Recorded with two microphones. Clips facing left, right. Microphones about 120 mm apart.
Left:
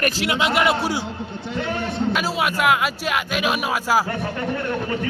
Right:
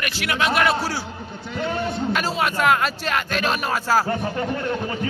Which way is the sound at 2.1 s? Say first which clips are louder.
Even; 5° left (ahead or behind).